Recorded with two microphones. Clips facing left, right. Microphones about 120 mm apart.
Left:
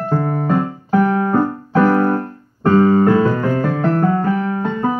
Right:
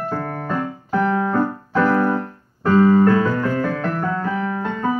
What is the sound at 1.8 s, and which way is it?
Keyboard, 40° left (ahead or behind).